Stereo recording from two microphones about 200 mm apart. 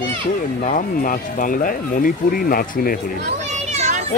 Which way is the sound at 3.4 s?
35° right (ahead or behind).